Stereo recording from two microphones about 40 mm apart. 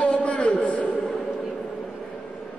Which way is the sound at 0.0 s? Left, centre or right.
Left.